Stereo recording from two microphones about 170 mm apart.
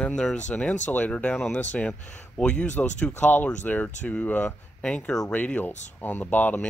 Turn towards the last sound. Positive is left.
turn(degrees=10)  # may be behind; listen again after turning